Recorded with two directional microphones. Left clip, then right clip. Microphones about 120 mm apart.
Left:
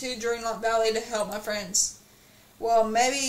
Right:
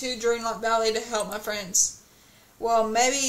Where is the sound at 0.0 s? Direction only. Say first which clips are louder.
Right 3 dB; 25° right (ahead or behind).